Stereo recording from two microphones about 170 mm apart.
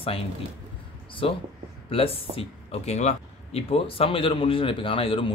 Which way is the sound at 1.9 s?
35° left (ahead or behind).